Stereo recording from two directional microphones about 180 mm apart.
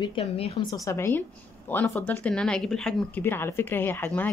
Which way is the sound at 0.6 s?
20° left (ahead or behind).